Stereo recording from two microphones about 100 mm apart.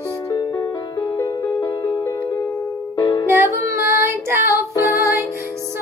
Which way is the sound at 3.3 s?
25° right (ahead or behind).